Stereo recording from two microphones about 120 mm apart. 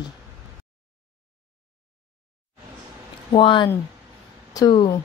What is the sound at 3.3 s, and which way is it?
Speech, 45° left (ahead or behind).